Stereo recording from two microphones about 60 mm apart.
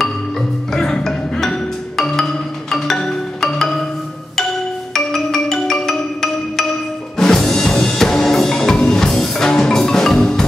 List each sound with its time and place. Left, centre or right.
0.7 s music: centre
4.9 s music: centre